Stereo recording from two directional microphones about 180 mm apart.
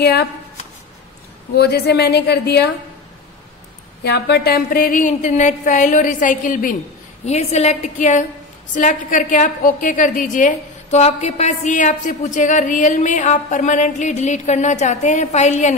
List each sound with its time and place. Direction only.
0.0 s a woman's voice: 65° left (ahead or behind)
1.6 s a woman's voice: 65° left (ahead or behind)
4.0 s a woman's voice: 65° left (ahead or behind); by 6.8 s 50° left (ahead or behind)
7.2 s a woman's voice: 40° left (ahead or behind)